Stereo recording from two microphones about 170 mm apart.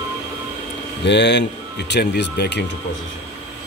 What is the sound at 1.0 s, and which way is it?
A man's voice, 90° left.